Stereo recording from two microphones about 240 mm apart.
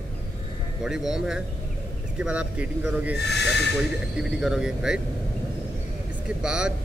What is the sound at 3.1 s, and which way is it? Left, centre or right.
Speech, left.